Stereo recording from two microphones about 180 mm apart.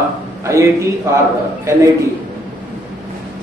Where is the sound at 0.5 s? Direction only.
15° right (ahead or behind).